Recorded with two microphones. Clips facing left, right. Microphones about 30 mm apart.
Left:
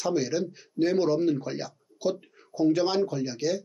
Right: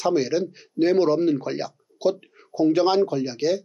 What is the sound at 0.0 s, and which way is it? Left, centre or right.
Speech, right.